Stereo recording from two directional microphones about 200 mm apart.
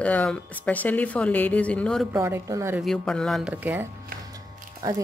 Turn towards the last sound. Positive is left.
turn(degrees=-15)  # may be behind; listen again after turning